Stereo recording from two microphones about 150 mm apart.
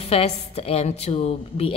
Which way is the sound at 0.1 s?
40° left (ahead or behind).